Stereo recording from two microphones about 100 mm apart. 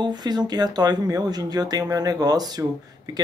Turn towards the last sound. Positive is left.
turn(degrees=-40)  # may be behind; listen again after turning